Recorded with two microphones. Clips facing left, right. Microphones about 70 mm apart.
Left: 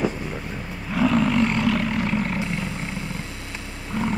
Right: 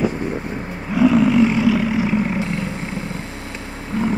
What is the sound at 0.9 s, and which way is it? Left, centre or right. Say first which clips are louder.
Roar: right 6 dB; centre.